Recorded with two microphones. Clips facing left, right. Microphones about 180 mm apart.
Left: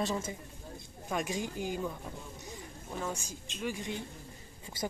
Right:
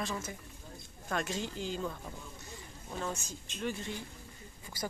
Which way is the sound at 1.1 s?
15° left (ahead or behind).